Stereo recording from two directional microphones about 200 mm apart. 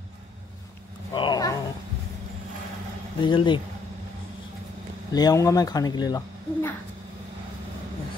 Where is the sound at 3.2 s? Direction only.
25° left (ahead or behind).